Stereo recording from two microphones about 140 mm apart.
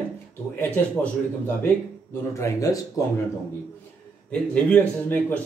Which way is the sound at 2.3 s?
25° left (ahead or behind).